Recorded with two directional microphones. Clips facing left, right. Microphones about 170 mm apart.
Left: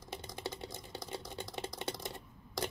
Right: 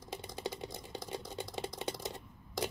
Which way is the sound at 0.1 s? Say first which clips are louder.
Right 2 dB; 15° right (ahead or behind).